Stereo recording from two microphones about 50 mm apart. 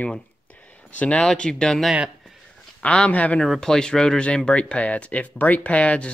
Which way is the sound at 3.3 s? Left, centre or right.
Centre.